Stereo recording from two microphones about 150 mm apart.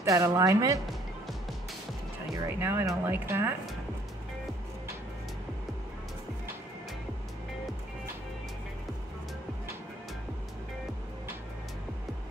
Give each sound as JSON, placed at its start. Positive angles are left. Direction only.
{"t": 0.0, "sound": "speech", "side_deg": -20}
{"t": 2.3, "sound": "speech", "side_deg": -15}